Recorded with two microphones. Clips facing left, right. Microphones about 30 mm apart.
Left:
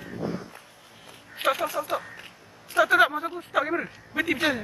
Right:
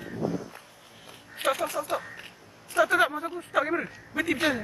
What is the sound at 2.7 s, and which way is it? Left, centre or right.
Speech, centre.